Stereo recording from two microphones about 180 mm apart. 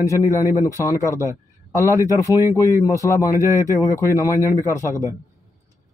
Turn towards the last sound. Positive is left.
turn(degrees=15)  # may be behind; listen again after turning